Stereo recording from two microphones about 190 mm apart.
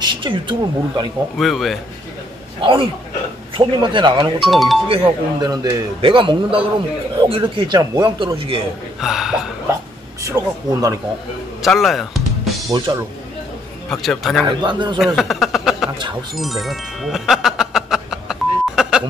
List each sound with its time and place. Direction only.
0.0 s speech: 25° right (ahead or behind)
1.4 s speech: centre (ahead or behind)
2.6 s a man's voice: 25° right (ahead or behind)
4.5 s speech: centre (ahead or behind)
4.8 s a man's voice: 25° right (ahead or behind)
9.0 s speech: centre (ahead or behind)
10.2 s speech: 15° right (ahead or behind)
11.6 s music: centre (ahead or behind)
12.7 s a man's voice: 25° right (ahead or behind)
13.8 s speech: centre (ahead or behind)
14.7 s a man's voice: 25° right (ahead or behind)
15.0 s speech: centre (ahead or behind)
16.3 s music: centre (ahead or behind)